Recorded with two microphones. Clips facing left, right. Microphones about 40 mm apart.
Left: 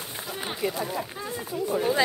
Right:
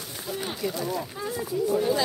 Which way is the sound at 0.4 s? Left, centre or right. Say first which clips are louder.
Left 2 dB; left.